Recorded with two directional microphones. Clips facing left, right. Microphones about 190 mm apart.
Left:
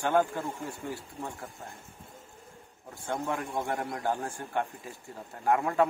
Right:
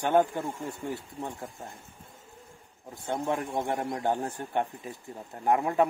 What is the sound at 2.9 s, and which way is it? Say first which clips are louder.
A man's voice: right 3 dB; 20° right (ahead or behind).